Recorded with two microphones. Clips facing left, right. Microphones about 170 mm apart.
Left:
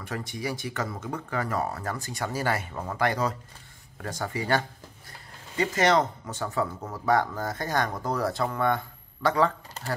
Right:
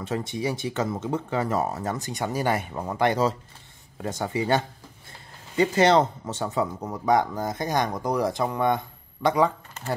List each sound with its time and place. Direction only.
0.0 s speech: 25° right (ahead or behind)